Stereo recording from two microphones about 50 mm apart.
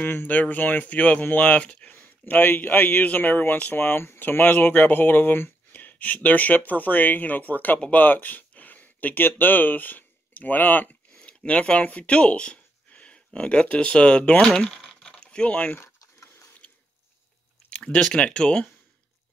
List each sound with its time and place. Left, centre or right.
0.0 s speech: left
2.0 s speech: left
3.7 s speech: left
14.7 s a sound: centre; by 15.8 s left
15.8 s a sound: left
17.6 s speech: centre